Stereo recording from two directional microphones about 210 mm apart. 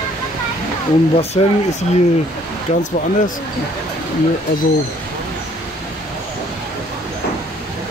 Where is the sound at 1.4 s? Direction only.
30° left (ahead or behind).